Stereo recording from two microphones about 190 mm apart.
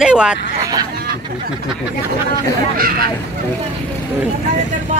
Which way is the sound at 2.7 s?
50° right (ahead or behind).